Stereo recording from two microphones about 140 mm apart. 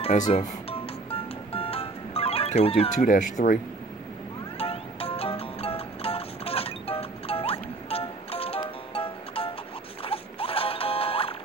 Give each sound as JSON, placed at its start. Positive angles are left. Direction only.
{"t": 0.3, "sound": "music", "side_deg": 45}
{"t": 3.0, "sound": "speech", "side_deg": 75}
{"t": 4.6, "sound": "music", "side_deg": 45}
{"t": 10.0, "sound": "mechanisms", "side_deg": 40}